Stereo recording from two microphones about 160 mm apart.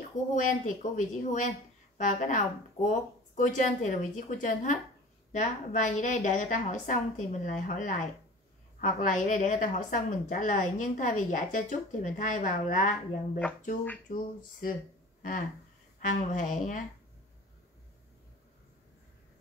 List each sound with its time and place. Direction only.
0.3 s a woman's voice: 50° left (ahead or behind)
16.0 s a woman's voice: 55° left (ahead or behind)